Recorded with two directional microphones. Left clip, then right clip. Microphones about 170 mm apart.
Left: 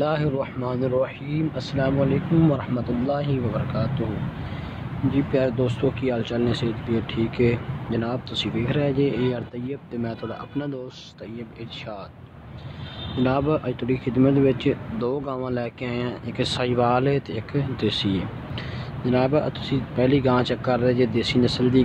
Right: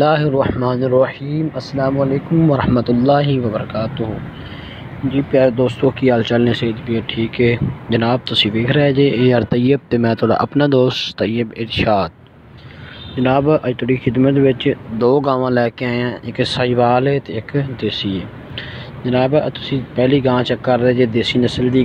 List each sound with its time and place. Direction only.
0.0 s speech: 30° right (ahead or behind)
2.5 s speech: 40° right (ahead or behind)
3.7 s speech: 25° right (ahead or behind)
5.3 s speech: 30° right (ahead or behind)
6.9 s speech: 5° right (ahead or behind)
7.9 s speech: 35° right (ahead or behind)
9.5 s speech: 45° right (ahead or behind)
13.2 s speech: 25° right (ahead or behind)
15.0 s speech: 40° right (ahead or behind)
16.3 s speech: 20° right (ahead or behind)
17.7 s speech: centre (ahead or behind)
19.0 s speech: 15° right (ahead or behind)